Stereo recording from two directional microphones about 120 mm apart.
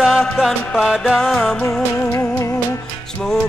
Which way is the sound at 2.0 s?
20° left (ahead or behind).